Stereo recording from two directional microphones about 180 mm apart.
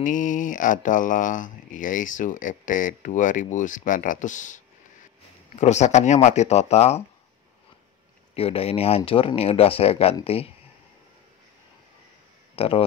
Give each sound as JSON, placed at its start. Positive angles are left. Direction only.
{"t": 0.0, "sound": "speech", "side_deg": 45}
{"t": 5.6, "sound": "speech", "side_deg": 40}
{"t": 8.4, "sound": "speech", "side_deg": 30}
{"t": 12.5, "sound": "speech", "side_deg": 30}